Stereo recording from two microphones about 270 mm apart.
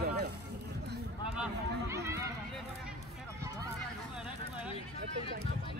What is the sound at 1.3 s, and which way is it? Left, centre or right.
Run, centre.